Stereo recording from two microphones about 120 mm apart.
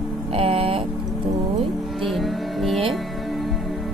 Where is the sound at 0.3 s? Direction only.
50° right (ahead or behind).